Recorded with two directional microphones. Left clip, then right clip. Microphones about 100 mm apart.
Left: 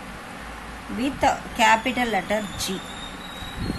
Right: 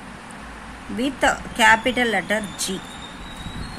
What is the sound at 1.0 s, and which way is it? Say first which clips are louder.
Speech: right 1 dB; 50° right (ahead or behind).